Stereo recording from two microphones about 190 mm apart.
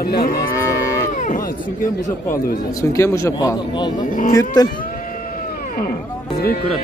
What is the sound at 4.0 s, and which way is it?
Speech, 45° left (ahead or behind).